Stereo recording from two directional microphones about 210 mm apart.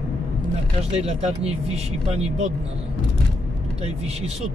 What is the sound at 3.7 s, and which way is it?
Speech, 30° right (ahead or behind).